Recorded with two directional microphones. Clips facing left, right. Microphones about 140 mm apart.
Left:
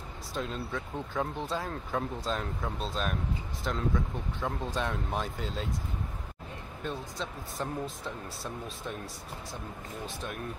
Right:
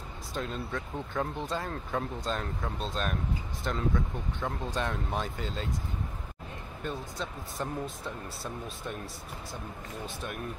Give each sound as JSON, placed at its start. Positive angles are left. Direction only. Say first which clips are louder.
{"t": 0.3, "sound": "speech", "louder": "even", "side_deg": 0}
{"t": 6.8, "sound": "speech", "louder": "even", "side_deg": 0}
{"t": 10.0, "sound": "speech", "louder": "even", "side_deg": 0}